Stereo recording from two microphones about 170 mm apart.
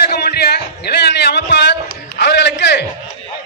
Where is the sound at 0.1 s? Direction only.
70° left (ahead or behind); by 2.8 s 90° left.